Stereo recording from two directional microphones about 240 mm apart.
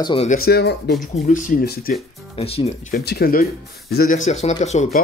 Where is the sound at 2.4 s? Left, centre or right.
Left.